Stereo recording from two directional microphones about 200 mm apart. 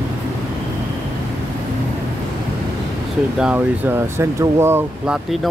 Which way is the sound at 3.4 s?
10° right (ahead or behind).